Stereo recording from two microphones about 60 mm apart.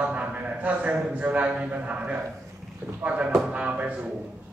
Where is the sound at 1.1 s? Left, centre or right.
Right.